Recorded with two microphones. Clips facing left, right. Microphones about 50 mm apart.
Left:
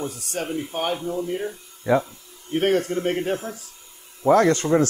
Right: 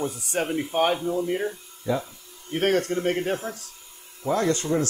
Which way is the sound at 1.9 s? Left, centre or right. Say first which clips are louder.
Left 6 dB; left.